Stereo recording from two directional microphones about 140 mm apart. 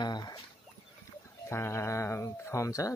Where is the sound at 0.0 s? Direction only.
30° left (ahead or behind).